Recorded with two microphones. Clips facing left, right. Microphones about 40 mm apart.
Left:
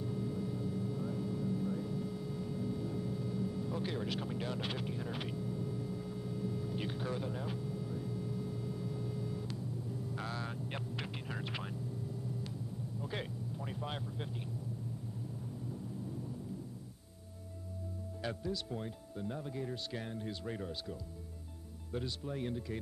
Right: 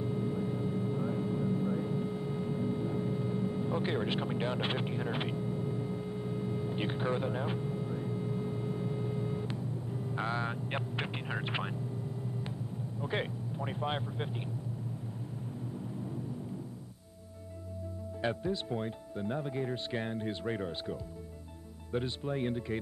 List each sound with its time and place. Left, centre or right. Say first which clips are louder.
0.0 s vehicle: right 5 dB; right
13.0 s speech: right 8 dB; right
18.2 s speech: right 6 dB; right